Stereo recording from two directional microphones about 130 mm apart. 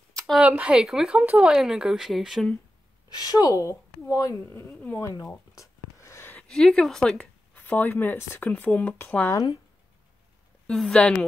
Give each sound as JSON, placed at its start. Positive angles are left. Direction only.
{"t": 0.4, "sound": "speech", "side_deg": -10}
{"t": 3.2, "sound": "a woman's voice", "side_deg": 25}
{"t": 9.3, "sound": "speech", "side_deg": 30}
{"t": 10.7, "sound": "speech", "side_deg": 5}